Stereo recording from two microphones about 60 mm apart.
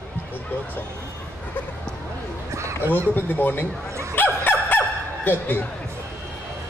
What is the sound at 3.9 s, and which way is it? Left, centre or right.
Dog, right.